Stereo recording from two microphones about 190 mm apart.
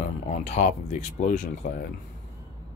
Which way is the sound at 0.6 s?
45° left (ahead or behind).